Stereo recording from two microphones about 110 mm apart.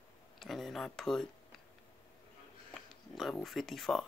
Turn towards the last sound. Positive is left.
turn(degrees=0)  # may be behind; listen again after turning